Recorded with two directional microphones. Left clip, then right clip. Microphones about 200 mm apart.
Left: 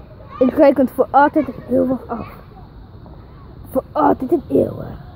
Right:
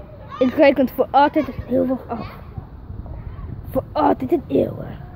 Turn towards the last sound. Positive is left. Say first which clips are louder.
# left 3 dB
turn(degrees=10)  # may be behind; listen again after turning